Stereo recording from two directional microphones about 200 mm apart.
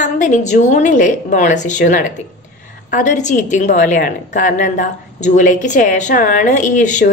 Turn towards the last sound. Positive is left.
turn(degrees=40)  # may be behind; listen again after turning